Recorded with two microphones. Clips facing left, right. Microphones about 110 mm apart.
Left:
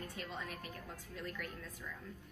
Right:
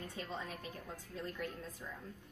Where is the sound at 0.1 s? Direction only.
20° right (ahead or behind).